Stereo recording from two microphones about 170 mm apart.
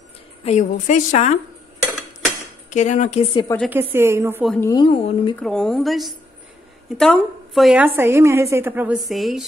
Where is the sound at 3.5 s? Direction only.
15° left (ahead or behind).